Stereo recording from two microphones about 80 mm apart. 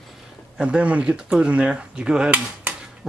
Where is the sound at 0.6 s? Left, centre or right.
Centre.